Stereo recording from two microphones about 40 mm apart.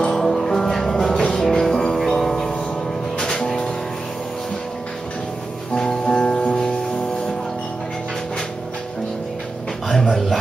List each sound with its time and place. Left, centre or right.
0.0 s music: centre
6.0 s music: left
9.8 s a sound: centre